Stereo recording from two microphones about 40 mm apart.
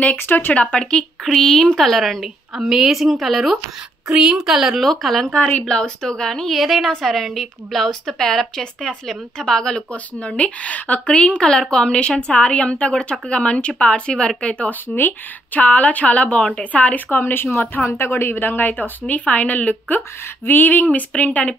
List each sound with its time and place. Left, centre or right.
0.3 s a woman's voice: left
0.7 s speech: left
1.2 s a woman's voice: centre
2.5 s a woman's voice: centre
4.2 s a woman's voice: centre
4.7 s a woman's voice: centre
6.5 s a woman's voice: centre
6.9 s a woman's voice: centre
10.2 s speech: left
14.7 s speech: left
17.2 s speech: left
17.8 s a woman's voice: left